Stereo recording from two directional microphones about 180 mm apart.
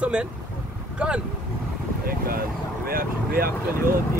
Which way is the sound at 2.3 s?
55° right (ahead or behind).